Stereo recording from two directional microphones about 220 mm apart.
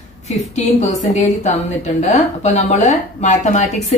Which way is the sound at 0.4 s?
30° left (ahead or behind).